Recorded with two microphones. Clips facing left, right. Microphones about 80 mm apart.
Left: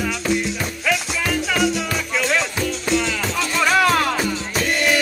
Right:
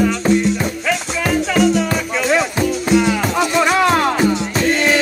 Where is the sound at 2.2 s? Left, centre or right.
Centre.